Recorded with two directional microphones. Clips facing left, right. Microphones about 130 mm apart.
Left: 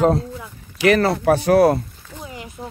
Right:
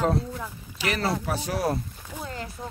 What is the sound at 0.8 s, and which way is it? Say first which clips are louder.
Speech: left 11 dB; 65° left (ahead or behind).